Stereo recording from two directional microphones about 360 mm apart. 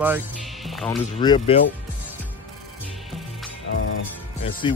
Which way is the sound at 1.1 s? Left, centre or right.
Centre.